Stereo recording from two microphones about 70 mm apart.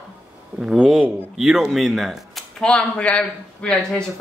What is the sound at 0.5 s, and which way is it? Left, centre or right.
Speech, centre.